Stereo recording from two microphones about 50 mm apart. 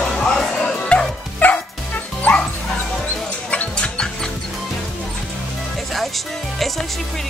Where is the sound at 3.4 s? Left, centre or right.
Left.